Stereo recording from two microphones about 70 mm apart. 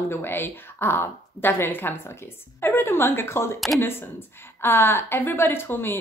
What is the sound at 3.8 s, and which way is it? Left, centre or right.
Speech, left.